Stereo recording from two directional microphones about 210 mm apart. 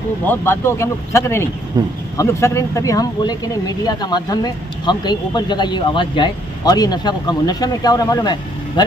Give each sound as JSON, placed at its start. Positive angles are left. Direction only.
{"t": 0.3, "sound": "a man's voice", "side_deg": 10}
{"t": 1.8, "sound": "speech", "side_deg": -20}
{"t": 2.1, "sound": "speech", "side_deg": 15}